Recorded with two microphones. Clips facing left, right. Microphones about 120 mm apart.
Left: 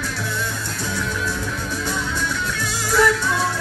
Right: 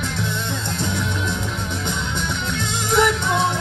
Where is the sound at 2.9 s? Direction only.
20° right (ahead or behind).